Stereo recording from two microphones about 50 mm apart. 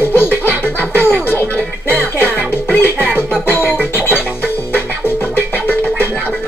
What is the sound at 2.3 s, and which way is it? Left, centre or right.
Music, centre.